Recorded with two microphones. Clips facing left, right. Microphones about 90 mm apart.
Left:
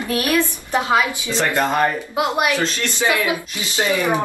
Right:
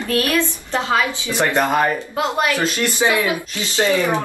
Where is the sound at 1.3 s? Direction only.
15° right (ahead or behind).